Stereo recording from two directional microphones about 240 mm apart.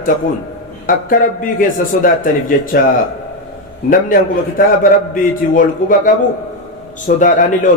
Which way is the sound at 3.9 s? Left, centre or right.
Left.